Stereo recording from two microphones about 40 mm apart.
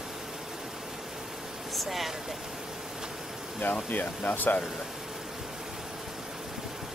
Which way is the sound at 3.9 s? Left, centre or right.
Left.